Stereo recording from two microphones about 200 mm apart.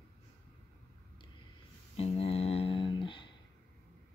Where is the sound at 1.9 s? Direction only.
30° left (ahead or behind).